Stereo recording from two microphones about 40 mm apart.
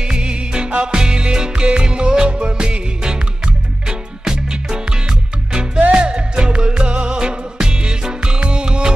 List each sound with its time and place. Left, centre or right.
0.0 s music: right
5.8 s music: right